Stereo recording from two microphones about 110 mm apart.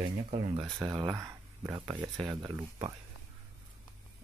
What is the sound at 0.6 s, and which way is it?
Speech, 35° right (ahead or behind).